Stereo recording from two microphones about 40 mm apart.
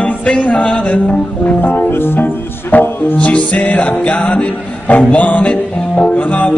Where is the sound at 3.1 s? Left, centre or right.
Left.